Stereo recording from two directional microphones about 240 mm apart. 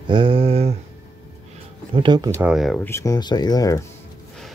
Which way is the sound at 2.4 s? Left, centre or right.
Centre.